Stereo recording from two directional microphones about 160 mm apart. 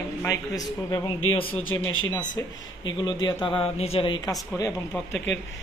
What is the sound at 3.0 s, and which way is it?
Speech, 30° left (ahead or behind).